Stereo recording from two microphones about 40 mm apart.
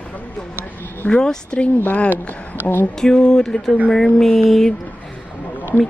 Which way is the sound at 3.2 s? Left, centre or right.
Centre.